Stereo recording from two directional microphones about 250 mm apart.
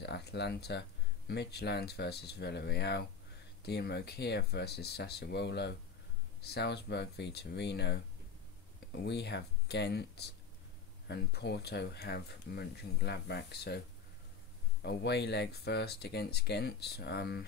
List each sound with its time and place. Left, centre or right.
0.0 s speech: left
14.8 s speech: left